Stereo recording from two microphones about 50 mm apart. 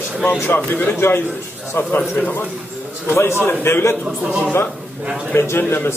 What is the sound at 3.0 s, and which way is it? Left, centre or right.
Speech, left.